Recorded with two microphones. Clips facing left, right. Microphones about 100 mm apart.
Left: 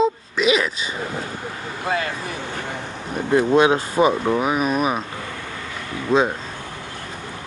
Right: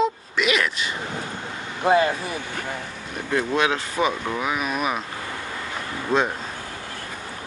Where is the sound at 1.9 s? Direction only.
25° right (ahead or behind).